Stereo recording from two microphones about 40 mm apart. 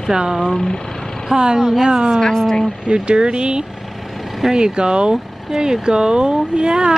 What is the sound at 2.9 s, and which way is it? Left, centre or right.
Speech, right.